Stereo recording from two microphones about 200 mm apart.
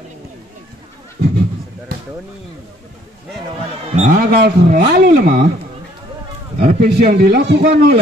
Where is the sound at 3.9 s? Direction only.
35° right (ahead or behind).